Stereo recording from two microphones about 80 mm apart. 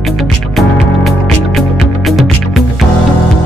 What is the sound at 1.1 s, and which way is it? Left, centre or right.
Music, centre.